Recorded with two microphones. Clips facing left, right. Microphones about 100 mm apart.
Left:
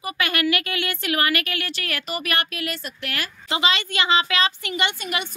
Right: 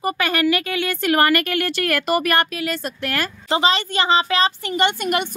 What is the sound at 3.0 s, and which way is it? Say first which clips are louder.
A woman's voice: right 6 dB; 40° right (ahead or behind).